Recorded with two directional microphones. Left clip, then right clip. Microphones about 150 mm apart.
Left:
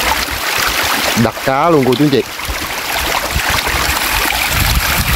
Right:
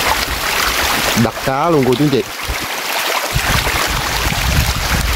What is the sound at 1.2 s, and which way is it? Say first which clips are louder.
Speech: left 3 dB; 10° left (ahead or behind).